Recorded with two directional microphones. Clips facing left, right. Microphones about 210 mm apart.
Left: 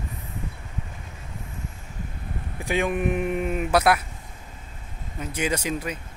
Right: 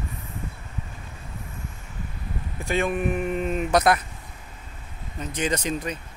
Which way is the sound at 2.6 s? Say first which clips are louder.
Even; 15° left (ahead or behind).